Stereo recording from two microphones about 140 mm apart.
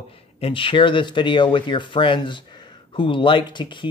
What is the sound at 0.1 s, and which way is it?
Speech, 40° left (ahead or behind).